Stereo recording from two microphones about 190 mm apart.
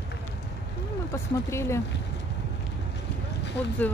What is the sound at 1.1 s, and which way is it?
Speech, 15° left (ahead or behind).